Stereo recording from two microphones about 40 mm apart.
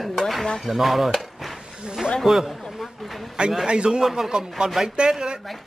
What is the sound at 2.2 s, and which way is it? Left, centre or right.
Speech, centre.